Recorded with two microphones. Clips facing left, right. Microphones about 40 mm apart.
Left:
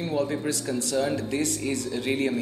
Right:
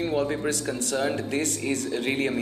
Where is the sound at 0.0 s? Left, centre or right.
Right.